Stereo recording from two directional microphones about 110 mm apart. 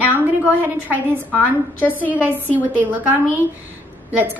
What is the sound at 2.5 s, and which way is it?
Speech, 15° right (ahead or behind).